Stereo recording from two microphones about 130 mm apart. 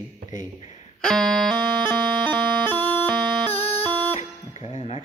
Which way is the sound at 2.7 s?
15° left (ahead or behind).